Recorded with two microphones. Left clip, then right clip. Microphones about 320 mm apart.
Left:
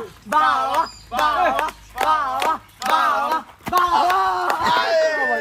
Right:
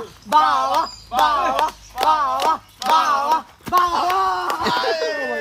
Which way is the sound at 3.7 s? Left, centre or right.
Centre.